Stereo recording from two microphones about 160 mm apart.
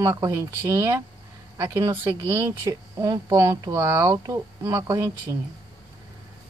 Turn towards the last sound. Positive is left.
turn(degrees=-20)  # may be behind; listen again after turning